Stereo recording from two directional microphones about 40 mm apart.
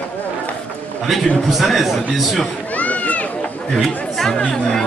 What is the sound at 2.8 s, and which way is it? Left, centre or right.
Run, left.